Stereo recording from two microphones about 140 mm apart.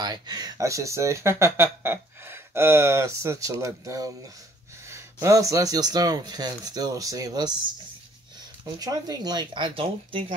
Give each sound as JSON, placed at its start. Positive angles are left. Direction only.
{"t": 0.0, "sound": "speech", "side_deg": -30}
{"t": 8.7, "sound": "speech", "side_deg": -25}